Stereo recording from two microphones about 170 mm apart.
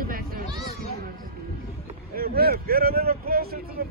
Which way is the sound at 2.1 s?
60° right (ahead or behind).